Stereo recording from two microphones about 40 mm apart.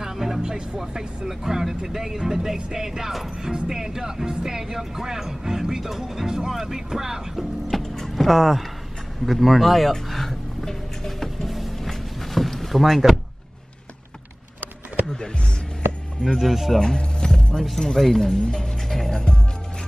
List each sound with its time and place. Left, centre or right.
0.0 s music: centre
0.4 s music: centre
0.7 s speech: centre
7.7 s music: centre
8.3 s speech: centre
9.2 s music: centre
16.3 s speech: centre
16.8 s music: centre
17.8 s speech: centre
18.4 s music: centre